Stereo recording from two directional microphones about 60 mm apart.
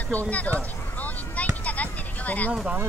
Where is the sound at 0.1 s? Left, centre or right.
Left.